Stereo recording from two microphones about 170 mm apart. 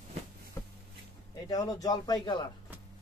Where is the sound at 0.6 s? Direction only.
20° left (ahead or behind).